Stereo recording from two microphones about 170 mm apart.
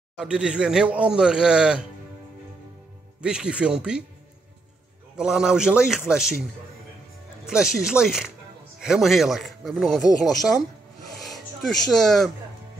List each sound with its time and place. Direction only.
0.2 s speech: 5° right (ahead or behind)
3.2 s speech: 5° right (ahead or behind)
5.1 s speech: 5° right (ahead or behind)
7.4 s speech: 5° right (ahead or behind)
11.2 s speech: centre (ahead or behind)